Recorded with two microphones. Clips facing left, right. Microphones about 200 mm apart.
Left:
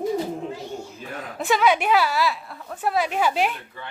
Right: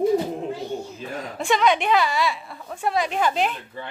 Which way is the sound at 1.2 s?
5° left (ahead or behind).